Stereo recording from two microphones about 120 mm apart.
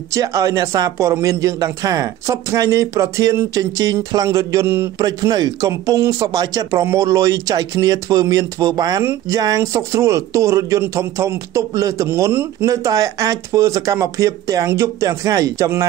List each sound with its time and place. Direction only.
0.1 s speech: 25° right (ahead or behind)
12.1 s speech: 20° right (ahead or behind)